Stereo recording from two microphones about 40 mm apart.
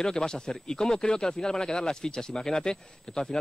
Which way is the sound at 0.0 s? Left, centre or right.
Centre.